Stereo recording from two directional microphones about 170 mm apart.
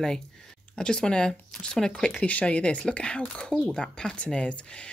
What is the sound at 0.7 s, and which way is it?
A woman's voice, 5° left (ahead or behind).